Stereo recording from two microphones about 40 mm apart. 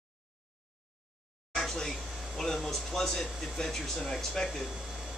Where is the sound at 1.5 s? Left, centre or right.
Centre.